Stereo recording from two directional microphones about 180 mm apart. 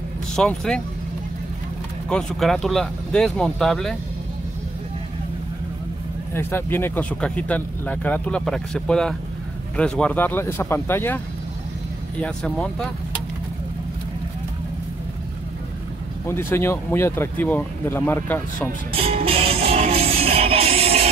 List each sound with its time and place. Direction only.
0.4 s speech: 5° left (ahead or behind)
2.0 s speech: 5° left (ahead or behind)
6.3 s speech: 10° left (ahead or behind)
12.2 s speech: 5° left (ahead or behind)
16.3 s speech: 15° left (ahead or behind)
18.9 s music: 30° right (ahead or behind)